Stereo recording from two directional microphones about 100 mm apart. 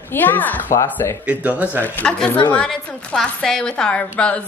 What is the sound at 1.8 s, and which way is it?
Speech, 10° left (ahead or behind).